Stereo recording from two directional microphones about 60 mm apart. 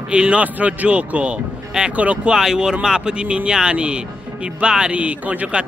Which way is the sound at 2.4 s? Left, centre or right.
Centre.